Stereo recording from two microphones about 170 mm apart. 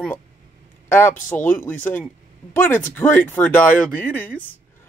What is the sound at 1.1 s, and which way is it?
Speech, 50° left (ahead or behind).